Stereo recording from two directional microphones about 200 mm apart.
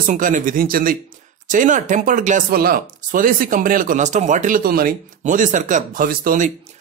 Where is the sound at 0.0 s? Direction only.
40° right (ahead or behind).